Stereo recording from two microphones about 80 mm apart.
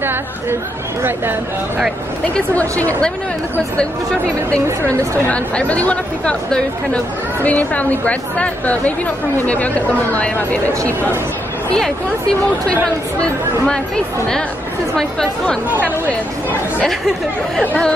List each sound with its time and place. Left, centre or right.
0.0 s speech: right
2.8 s a woman's voice: left
11.7 s a woman's voice: centre
15.0 s a woman's voice: centre